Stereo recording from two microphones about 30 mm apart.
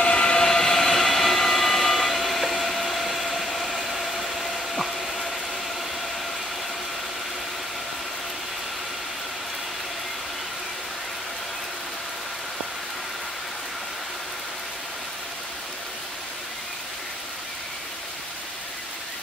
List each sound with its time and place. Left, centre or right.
0.0 s train: left
0.5 s train: centre
4.0 s a sound: centre